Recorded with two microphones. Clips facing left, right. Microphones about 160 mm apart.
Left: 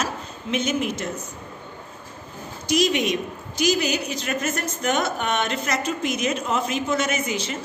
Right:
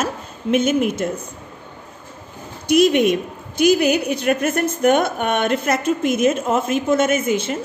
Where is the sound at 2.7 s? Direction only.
55° right (ahead or behind).